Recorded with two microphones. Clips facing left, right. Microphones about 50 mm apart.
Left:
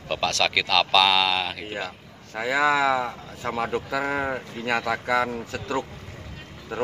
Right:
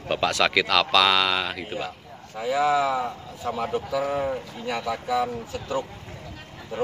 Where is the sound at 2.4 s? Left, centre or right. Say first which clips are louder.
Left 1 dB; left.